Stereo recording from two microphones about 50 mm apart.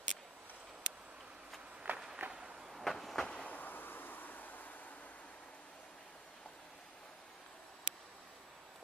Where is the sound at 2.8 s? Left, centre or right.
Centre.